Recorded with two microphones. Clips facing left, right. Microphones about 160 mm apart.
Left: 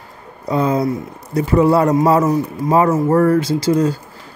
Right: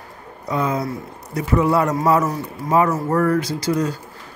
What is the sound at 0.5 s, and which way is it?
A man's voice, 30° left (ahead or behind).